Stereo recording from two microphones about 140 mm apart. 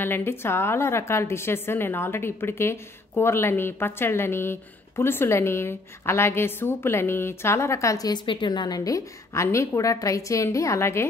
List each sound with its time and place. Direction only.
0.0 s a woman's voice: 15° left (ahead or behind)